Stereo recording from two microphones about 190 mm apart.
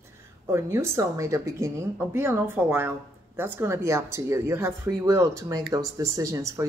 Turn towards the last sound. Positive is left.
turn(degrees=-15)  # may be behind; listen again after turning